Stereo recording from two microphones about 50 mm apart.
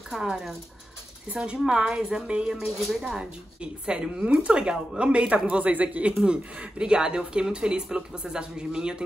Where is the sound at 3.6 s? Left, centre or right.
Centre.